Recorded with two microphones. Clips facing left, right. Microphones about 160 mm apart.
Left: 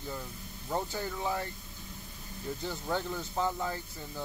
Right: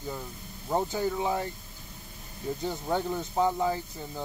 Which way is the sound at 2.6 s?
20° right (ahead or behind).